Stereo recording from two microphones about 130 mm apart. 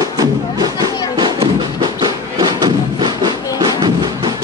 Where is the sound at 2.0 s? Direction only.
35° right (ahead or behind).